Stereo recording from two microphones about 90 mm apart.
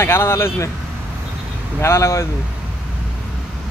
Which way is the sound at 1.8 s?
30° left (ahead or behind).